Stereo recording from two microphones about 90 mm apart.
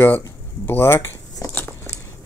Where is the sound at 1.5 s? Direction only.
25° left (ahead or behind).